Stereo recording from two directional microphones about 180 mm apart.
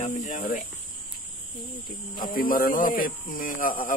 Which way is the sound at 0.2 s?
45° left (ahead or behind).